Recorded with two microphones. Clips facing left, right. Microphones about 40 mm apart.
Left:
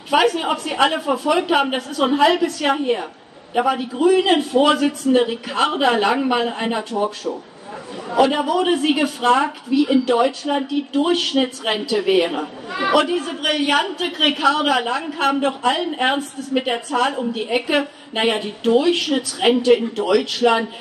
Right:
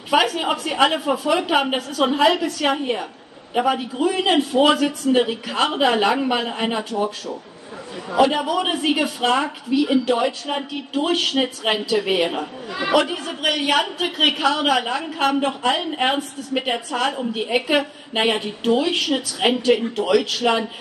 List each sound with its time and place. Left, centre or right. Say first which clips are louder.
0.1 s a man's voice: left 2 dB; centre
7.3 s a woman's voice: left 5 dB; centre
8.1 s a man's voice: left 1 dB; centre